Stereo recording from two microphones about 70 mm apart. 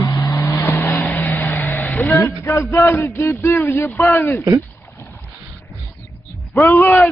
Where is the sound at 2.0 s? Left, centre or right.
Left.